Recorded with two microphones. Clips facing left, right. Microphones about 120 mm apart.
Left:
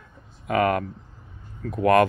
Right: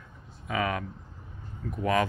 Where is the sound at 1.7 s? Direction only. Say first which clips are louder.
Left 8 dB; 65° left (ahead or behind).